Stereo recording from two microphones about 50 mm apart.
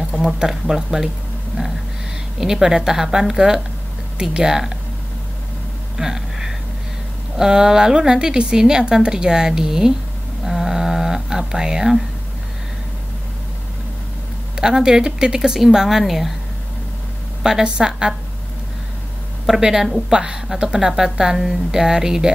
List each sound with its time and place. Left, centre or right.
0.4 s a woman's voice: centre
2.4 s a woman's voice: centre
5.9 s a sound: centre
7.3 s a woman's voice: centre
10.4 s a sound: centre
14.6 s a woman's voice: centre
17.4 s a woman's voice: centre
19.4 s a woman's voice: centre